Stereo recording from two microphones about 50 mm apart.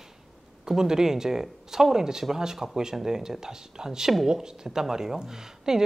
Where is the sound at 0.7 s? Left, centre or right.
Centre.